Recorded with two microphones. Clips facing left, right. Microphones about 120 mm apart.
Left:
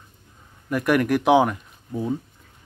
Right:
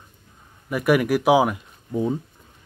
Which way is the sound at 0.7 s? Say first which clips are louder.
Right 1 dB; 5° right (ahead or behind).